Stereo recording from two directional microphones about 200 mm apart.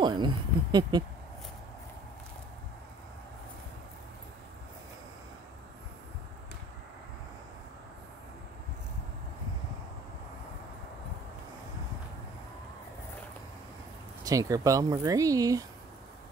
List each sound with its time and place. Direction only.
0.0 s speech: 20° right (ahead or behind)
14.2 s speech: 15° right (ahead or behind)